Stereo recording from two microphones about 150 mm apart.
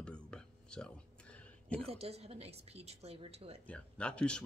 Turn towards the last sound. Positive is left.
turn(degrees=5)  # may be behind; listen again after turning